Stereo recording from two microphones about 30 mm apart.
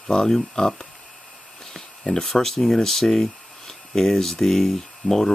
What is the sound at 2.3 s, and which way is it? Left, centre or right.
Speech, centre.